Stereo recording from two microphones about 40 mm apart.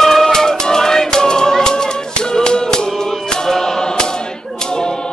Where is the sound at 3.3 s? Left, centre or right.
Centre.